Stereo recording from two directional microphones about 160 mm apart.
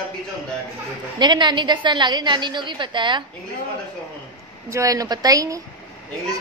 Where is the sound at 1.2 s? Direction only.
30° right (ahead or behind).